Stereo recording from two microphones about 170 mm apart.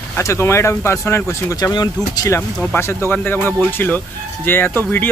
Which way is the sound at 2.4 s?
10° left (ahead or behind).